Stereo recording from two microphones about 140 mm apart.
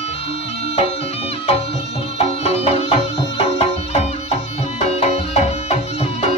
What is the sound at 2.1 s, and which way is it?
Music, 45° left (ahead or behind).